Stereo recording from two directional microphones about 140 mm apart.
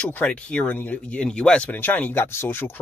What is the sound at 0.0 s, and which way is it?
Speech, 10° left (ahead or behind).